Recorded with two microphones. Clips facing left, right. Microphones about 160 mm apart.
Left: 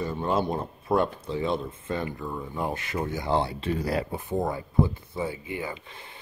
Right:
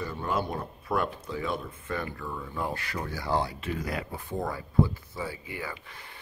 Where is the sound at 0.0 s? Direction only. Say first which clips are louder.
Left 4 dB; 25° left (ahead or behind).